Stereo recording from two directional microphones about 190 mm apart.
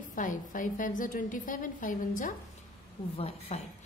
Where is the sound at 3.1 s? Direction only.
30° left (ahead or behind).